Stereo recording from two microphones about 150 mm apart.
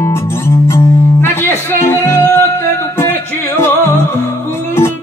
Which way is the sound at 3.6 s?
15° left (ahead or behind).